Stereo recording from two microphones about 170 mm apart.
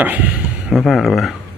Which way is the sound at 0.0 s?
10° right (ahead or behind).